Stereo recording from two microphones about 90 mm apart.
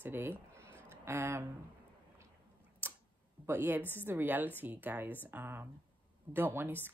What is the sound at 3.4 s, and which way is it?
A woman's voice, 20° right (ahead or behind).